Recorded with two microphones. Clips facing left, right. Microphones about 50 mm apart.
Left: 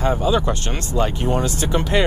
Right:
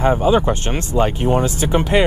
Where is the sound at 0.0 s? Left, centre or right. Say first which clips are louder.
Right 4 dB; right.